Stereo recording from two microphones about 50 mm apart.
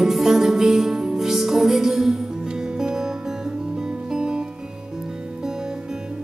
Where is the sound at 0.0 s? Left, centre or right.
Centre.